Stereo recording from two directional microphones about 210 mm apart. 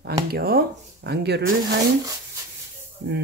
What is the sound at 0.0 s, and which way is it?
Speech, 45° right (ahead or behind).